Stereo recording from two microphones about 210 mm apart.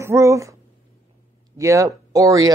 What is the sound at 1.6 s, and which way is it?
Speech, 15° right (ahead or behind).